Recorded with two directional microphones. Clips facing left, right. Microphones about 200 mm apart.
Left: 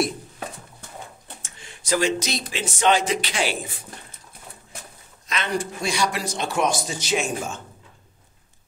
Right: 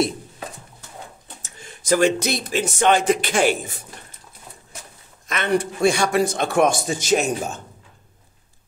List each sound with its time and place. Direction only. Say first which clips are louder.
1.4 s speech: right 3 dB; 45° right (ahead or behind)
5.3 s a man's voice: right 5 dB; 60° right (ahead or behind); by 7.6 s 40° right (ahead or behind)